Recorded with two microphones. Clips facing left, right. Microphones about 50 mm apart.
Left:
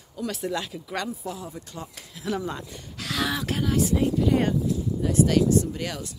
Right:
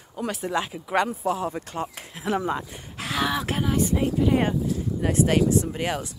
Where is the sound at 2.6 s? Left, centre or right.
Right.